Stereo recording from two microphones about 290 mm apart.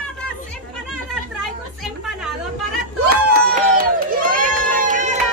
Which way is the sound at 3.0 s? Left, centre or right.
Right.